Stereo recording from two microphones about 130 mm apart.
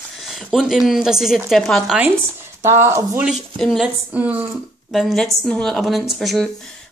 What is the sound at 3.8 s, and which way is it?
Speech, 10° right (ahead or behind).